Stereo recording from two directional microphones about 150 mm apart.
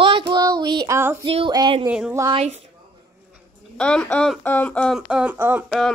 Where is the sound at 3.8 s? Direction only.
5° left (ahead or behind).